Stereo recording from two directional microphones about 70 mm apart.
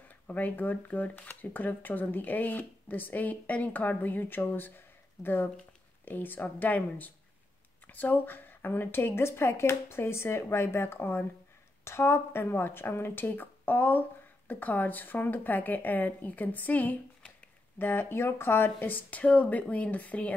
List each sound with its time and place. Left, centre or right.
0.3 s speech: left